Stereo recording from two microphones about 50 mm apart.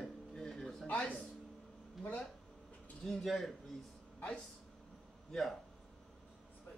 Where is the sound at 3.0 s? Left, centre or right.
Centre.